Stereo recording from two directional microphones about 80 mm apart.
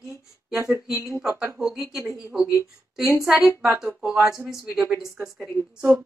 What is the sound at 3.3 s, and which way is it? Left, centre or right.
A woman's voice, centre.